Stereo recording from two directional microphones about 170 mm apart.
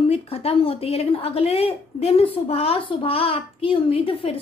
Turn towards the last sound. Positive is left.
turn(degrees=30)  # may be behind; listen again after turning